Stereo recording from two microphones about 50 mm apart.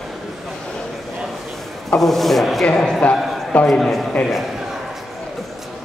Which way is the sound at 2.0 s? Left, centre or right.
Centre.